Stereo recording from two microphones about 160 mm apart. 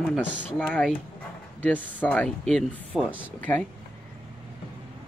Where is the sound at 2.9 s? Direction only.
10° right (ahead or behind).